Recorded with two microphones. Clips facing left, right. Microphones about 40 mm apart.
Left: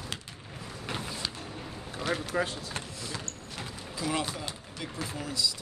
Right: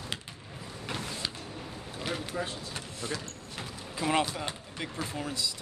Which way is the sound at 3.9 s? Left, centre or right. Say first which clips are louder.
Right 4 dB; right.